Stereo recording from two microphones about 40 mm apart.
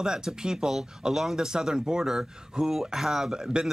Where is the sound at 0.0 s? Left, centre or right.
Centre.